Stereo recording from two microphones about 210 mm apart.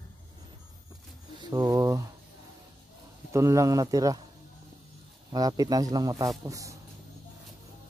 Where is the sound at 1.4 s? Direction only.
15° right (ahead or behind).